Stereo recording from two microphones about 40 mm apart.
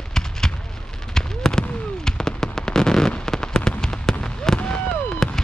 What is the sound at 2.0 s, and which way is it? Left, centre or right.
Fireworks, centre.